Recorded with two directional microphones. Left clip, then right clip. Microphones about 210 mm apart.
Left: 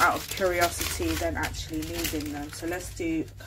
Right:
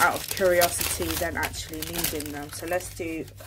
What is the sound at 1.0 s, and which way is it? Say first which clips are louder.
Speech: left 2 dB; 40° right (ahead or behind).